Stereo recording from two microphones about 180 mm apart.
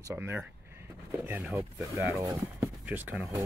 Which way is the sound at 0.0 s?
15° right (ahead or behind).